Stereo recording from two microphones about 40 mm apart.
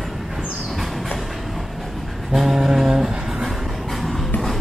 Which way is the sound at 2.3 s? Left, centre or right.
Centre.